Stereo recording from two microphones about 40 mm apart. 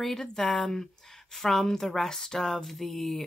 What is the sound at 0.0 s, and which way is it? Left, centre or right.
Speech, centre.